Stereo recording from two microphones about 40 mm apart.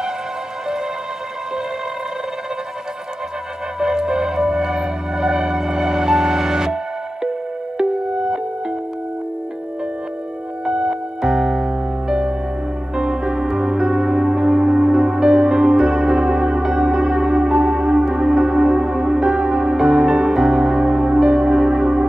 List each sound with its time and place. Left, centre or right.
3.8 s music: centre
10.6 s music: centre